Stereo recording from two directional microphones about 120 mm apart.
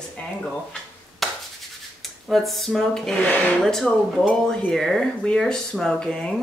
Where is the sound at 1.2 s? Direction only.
Centre (ahead or behind).